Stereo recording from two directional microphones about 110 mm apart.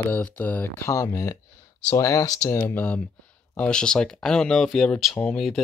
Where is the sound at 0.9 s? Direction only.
30° left (ahead or behind).